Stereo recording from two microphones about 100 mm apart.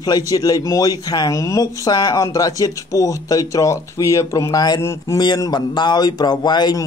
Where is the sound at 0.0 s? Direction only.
40° left (ahead or behind).